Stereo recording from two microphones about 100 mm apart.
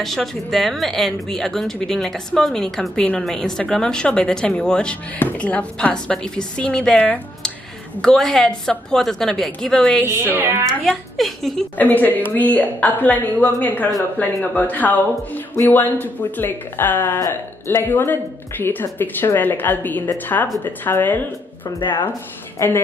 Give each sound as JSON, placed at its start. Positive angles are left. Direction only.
{"t": 0.0, "sound": "a woman's voice", "side_deg": 5}
{"t": 10.0, "sound": "speech", "side_deg": -25}
{"t": 10.7, "sound": "a woman's voice", "side_deg": 0}
{"t": 11.7, "sound": "a woman's voice", "side_deg": 15}
{"t": 22.6, "sound": "speech", "side_deg": 25}